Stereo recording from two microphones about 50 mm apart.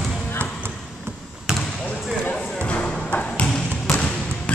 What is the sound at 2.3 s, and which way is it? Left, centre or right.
Music, left.